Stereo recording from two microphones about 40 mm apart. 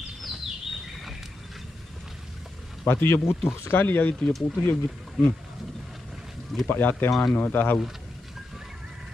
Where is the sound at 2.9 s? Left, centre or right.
Left.